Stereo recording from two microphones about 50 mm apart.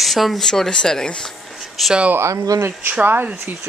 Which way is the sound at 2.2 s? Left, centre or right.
Right.